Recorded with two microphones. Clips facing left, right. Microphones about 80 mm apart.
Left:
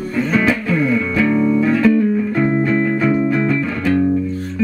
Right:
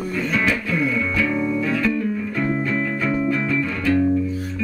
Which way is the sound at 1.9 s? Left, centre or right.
Left.